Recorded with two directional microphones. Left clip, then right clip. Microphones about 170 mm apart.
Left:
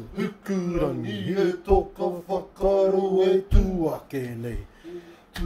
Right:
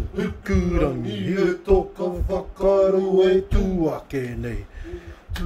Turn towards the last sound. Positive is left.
turn(degrees=-20)  # may be behind; listen again after turning